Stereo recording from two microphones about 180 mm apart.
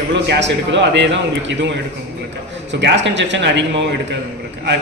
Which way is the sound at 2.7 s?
75° right (ahead or behind).